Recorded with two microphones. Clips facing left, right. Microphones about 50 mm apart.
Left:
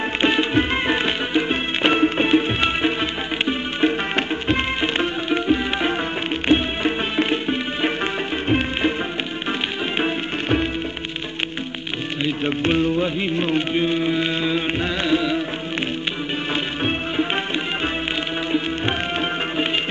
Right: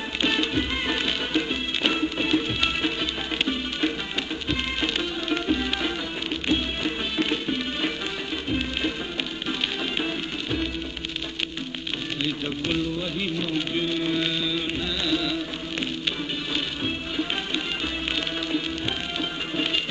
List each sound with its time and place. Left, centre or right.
0.2 s music: left
12.4 s music: left
16.5 s music: left
18.5 s music: left